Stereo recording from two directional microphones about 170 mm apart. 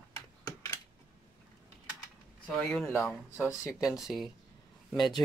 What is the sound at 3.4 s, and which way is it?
Speech, 5° right (ahead or behind).